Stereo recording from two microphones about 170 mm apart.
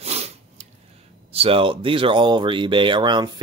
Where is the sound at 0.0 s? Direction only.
40° right (ahead or behind).